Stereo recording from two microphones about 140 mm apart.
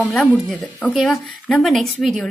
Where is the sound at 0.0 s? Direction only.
10° left (ahead or behind).